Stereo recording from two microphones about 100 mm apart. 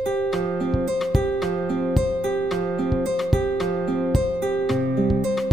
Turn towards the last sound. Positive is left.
turn(degrees=0)  # may be behind; listen again after turning